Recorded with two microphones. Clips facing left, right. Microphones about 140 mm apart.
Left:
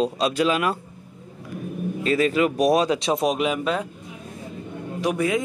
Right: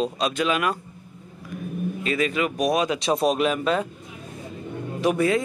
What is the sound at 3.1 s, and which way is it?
Speech, 10° left (ahead or behind).